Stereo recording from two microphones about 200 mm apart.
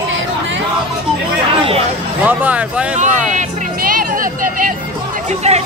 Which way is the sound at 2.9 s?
40° right (ahead or behind).